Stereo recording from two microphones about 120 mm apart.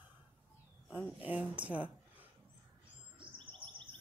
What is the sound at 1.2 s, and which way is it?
Speech, 15° right (ahead or behind).